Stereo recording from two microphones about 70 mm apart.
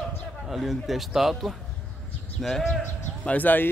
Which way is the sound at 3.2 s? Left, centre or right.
Left.